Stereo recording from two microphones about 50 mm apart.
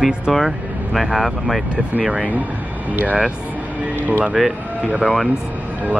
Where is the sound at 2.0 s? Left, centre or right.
Right.